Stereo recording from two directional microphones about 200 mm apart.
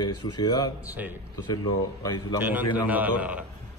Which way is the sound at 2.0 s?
20° left (ahead or behind).